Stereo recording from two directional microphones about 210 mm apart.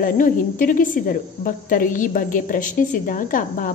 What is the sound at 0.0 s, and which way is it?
A woman's voice, 40° left (ahead or behind).